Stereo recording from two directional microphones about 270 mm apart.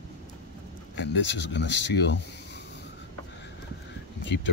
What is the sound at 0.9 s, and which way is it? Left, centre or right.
Speech, left.